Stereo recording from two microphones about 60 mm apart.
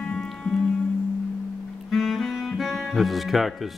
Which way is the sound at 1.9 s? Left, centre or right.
Centre.